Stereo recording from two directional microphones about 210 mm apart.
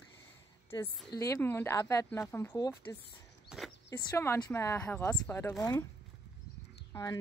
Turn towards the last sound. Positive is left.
turn(degrees=15)  # may be behind; listen again after turning